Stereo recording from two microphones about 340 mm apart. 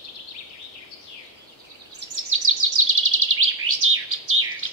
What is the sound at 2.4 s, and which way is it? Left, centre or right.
Bird vocalization, right.